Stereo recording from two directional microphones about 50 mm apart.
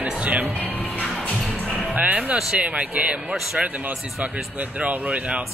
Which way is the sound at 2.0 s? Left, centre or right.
Right.